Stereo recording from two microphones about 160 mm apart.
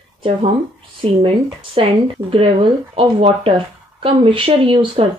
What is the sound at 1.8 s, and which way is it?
Speech, 35° right (ahead or behind).